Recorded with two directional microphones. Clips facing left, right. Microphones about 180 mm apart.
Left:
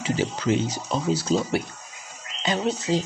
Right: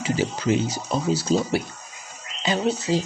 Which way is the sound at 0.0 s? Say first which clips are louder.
Right 1 dB; 10° right (ahead or behind).